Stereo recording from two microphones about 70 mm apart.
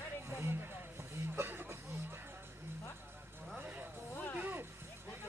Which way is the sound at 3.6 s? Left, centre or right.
Right.